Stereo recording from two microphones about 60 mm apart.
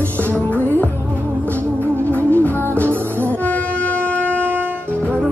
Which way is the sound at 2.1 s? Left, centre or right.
Left.